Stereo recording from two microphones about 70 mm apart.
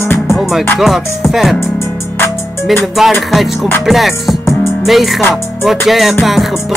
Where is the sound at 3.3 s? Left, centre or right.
Centre.